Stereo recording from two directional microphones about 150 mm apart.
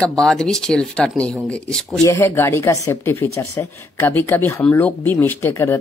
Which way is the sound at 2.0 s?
20° left (ahead or behind).